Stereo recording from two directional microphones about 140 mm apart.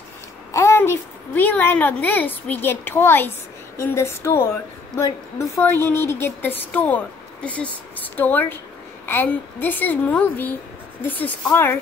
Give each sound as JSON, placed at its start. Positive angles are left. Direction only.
{"t": 0.5, "sound": "a woman's voice", "side_deg": 20}